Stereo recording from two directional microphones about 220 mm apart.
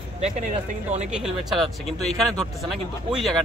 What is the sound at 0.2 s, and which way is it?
Speech, 30° right (ahead or behind).